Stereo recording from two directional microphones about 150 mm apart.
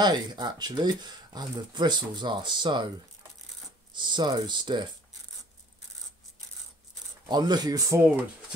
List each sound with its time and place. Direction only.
0.0 s speech: 30° right (ahead or behind)
3.9 s speech: 30° right (ahead or behind)
7.2 s speech: 30° right (ahead or behind)